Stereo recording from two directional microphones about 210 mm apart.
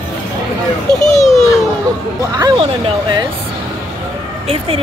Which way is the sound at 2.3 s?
20° right (ahead or behind).